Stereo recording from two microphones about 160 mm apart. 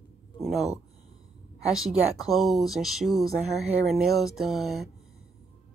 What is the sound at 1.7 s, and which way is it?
Speech, 5° right (ahead or behind).